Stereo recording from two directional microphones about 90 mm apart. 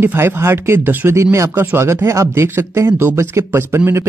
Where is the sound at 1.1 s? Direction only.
35° right (ahead or behind).